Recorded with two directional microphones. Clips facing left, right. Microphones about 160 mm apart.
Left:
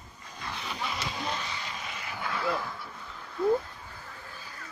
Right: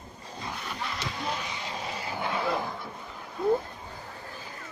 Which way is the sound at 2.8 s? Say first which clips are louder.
Right 3 dB; 20° right (ahead or behind).